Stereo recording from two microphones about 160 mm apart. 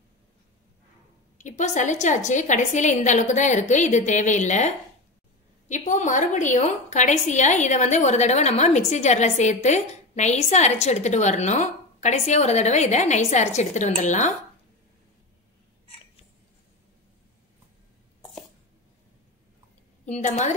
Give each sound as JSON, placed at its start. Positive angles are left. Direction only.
{"t": 1.4, "sound": "a woman's voice", "side_deg": 50}
{"t": 20.1, "sound": "a woman's voice", "side_deg": 45}